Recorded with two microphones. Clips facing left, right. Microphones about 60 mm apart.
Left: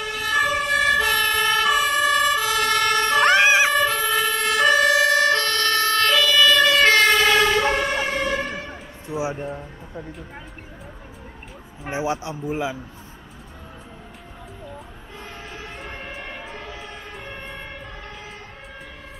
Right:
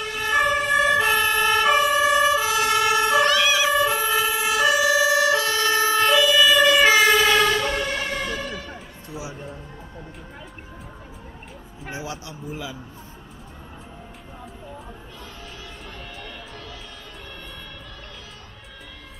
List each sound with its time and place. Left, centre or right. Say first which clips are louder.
0.0 s emergency vehicle: even; centre
3.3 s emergency vehicle: left 4 dB; left
3.7 s emergency vehicle: even; centre
7.5 s vehicle: left 4 dB; left
11.9 s speech: left 8 dB; left
15.9 s a sound: left 3 dB; left